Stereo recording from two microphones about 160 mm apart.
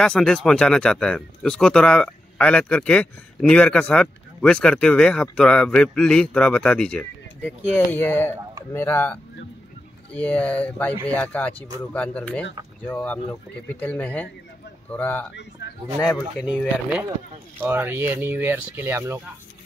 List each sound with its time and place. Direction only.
0.0 s speech: 5° left (ahead or behind)
15.6 s a sound: 90° left
16.0 s speech: 10° left (ahead or behind)
16.5 s speech: 5° right (ahead or behind)
17.6 s speech: 15° right (ahead or behind)